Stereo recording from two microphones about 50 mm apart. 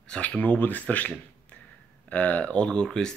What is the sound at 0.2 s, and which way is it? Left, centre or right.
Speech, left.